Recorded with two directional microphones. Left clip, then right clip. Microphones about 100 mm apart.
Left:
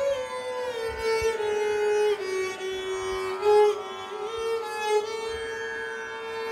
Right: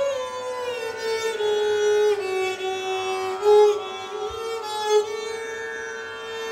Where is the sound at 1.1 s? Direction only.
30° right (ahead or behind).